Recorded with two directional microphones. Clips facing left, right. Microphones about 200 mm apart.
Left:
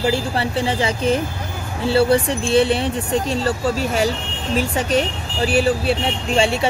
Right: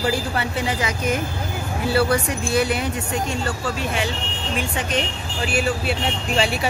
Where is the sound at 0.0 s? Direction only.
30° left (ahead or behind).